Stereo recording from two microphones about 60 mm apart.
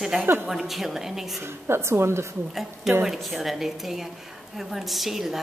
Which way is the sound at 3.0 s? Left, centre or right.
Centre.